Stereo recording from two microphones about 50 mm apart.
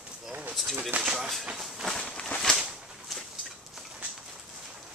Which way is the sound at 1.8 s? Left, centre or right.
Centre.